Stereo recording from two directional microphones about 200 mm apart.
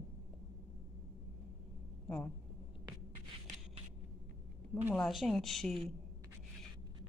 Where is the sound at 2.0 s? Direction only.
5° left (ahead or behind).